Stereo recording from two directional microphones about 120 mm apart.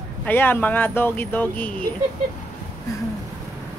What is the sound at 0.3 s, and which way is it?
Speech, 15° left (ahead or behind).